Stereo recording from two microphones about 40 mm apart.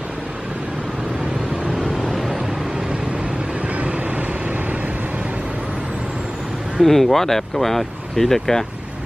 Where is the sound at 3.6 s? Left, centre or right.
Right.